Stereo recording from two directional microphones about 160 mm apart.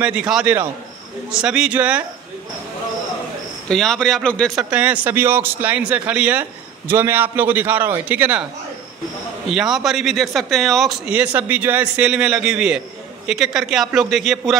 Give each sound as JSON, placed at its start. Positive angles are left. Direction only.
{"t": 0.0, "sound": "speech", "side_deg": -5}
{"t": 3.6, "sound": "speech", "side_deg": 5}
{"t": 4.6, "sound": "speech", "side_deg": -10}
{"t": 9.5, "sound": "speech", "side_deg": -5}